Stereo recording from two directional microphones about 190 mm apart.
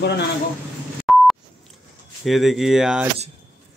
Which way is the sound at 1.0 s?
Centre (ahead or behind).